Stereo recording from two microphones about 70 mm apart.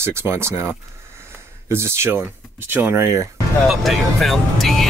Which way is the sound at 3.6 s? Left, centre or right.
Centre.